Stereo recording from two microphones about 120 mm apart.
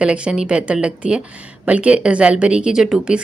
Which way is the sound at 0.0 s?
10° right (ahead or behind).